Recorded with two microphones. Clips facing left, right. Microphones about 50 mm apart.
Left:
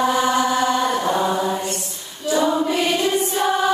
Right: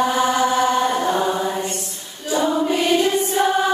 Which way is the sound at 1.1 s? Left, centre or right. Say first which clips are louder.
Even; right.